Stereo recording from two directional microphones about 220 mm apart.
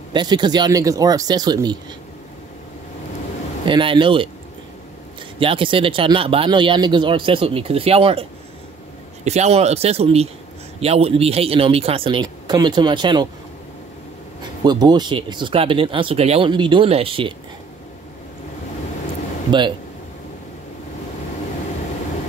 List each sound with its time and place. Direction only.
0.1 s speech: 20° right (ahead or behind)
3.6 s speech: 20° right (ahead or behind)
5.4 s speech: 25° right (ahead or behind)
14.6 s speech: 20° right (ahead or behind)
19.5 s speech: 20° right (ahead or behind)